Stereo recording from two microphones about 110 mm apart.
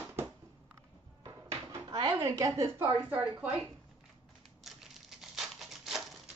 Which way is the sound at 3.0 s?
15° right (ahead or behind).